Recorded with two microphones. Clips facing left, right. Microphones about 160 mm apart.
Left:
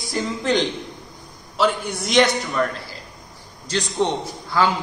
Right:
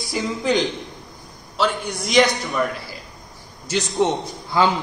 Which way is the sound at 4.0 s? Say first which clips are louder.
Right 2 dB; 10° right (ahead or behind).